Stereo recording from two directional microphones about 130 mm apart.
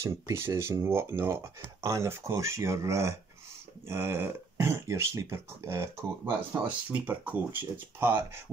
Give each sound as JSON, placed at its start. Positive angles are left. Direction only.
{"t": 0.0, "sound": "speech", "side_deg": -20}